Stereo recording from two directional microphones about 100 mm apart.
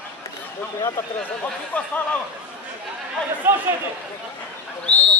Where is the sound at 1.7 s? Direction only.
15° left (ahead or behind).